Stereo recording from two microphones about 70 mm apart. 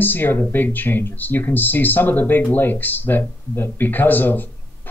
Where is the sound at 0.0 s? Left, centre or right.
Left.